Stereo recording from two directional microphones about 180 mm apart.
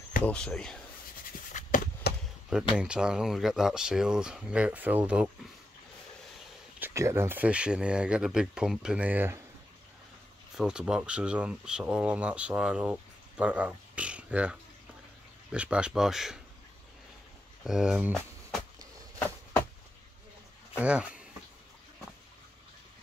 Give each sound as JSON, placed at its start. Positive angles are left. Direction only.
{"t": 0.2, "sound": "speech", "side_deg": 5}
{"t": 1.5, "sound": "a sound", "side_deg": 45}
{"t": 2.1, "sound": "chop", "side_deg": 65}
{"t": 2.8, "sound": "speech", "side_deg": -5}
{"t": 6.8, "sound": "speech", "side_deg": -15}
{"t": 10.5, "sound": "speech", "side_deg": -5}
{"t": 17.6, "sound": "speech", "side_deg": -5}
{"t": 20.8, "sound": "speech", "side_deg": -5}